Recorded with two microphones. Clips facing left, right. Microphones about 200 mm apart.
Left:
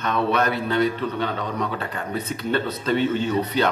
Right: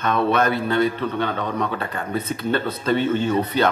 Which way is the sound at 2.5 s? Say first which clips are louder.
Right 1 dB; 50° right (ahead or behind).